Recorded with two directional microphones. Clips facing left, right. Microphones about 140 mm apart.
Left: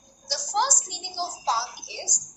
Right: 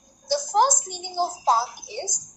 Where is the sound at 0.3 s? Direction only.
50° right (ahead or behind).